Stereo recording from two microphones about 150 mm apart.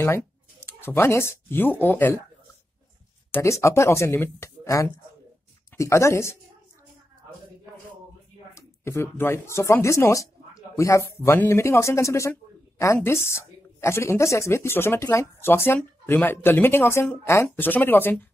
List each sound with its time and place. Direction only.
0.7 s speech: 15° left (ahead or behind)
3.3 s speech: 20° left (ahead or behind)
8.5 s speech: 15° left (ahead or behind)